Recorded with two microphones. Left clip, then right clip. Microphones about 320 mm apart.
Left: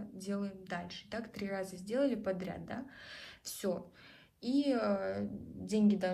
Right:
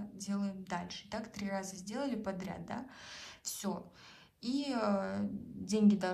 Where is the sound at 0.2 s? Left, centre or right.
Centre.